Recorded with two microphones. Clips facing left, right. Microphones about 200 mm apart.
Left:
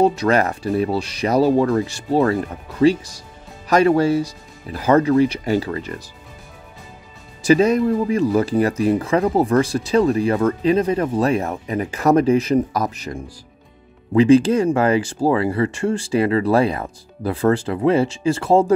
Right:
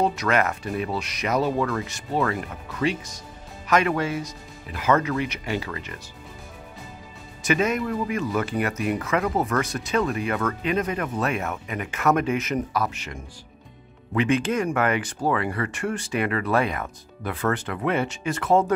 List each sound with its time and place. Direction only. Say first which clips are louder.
0.0 s speech: left 6 dB; 30° left (ahead or behind)
7.4 s speech: left 9 dB; 35° left (ahead or behind)